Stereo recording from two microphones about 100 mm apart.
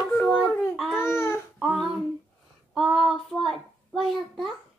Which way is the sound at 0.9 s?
25° left (ahead or behind).